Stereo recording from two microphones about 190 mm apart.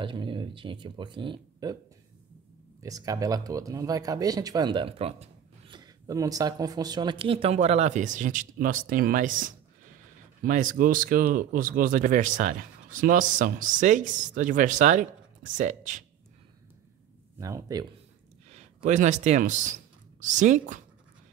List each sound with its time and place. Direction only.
0.0 s speech: 25° right (ahead or behind)
2.8 s speech: 20° right (ahead or behind); by 16.0 s 40° right (ahead or behind)
17.4 s speech: 15° right (ahead or behind)
18.5 s speech: 40° right (ahead or behind)